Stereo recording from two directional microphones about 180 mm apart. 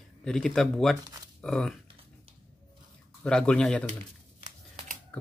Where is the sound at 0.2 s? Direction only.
5° left (ahead or behind).